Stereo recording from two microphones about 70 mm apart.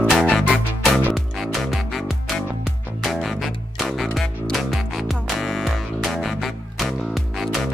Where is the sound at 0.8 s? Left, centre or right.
Centre.